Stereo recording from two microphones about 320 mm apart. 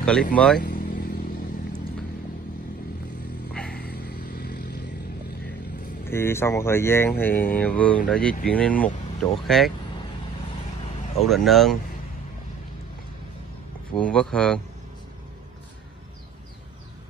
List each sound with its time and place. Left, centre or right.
0.3 s speech: centre
0.6 s vehicle: left
3.7 s vehicle: left
6.0 s speech: centre
11.2 s speech: centre
13.9 s speech: centre